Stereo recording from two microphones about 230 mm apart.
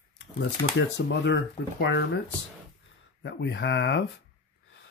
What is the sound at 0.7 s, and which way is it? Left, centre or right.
Speech, left.